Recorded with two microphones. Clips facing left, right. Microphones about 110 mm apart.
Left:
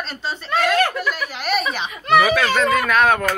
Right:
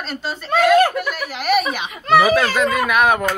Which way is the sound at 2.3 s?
30° right (ahead or behind).